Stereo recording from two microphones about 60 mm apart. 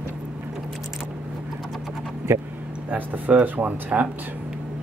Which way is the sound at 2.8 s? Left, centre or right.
Right.